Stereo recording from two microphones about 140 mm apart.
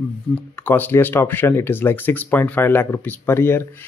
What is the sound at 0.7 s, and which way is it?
Speech, 15° left (ahead or behind).